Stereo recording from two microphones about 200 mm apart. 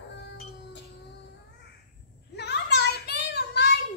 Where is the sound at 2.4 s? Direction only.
60° left (ahead or behind).